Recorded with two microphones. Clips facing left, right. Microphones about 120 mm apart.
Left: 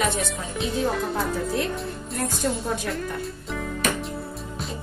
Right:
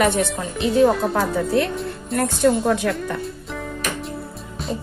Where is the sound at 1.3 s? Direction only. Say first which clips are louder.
Right 6 dB; 65° right (ahead or behind).